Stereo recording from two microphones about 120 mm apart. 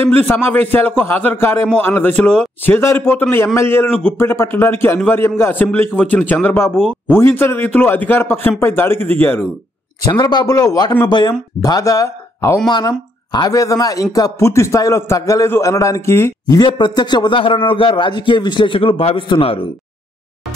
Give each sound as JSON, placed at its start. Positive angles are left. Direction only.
{"t": 0.0, "sound": "a man's voice", "side_deg": 15}
{"t": 10.0, "sound": "a man's voice", "side_deg": 35}
{"t": 12.6, "sound": "a man's voice", "side_deg": 35}